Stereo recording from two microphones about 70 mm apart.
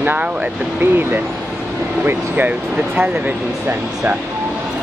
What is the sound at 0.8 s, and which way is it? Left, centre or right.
Speech, right.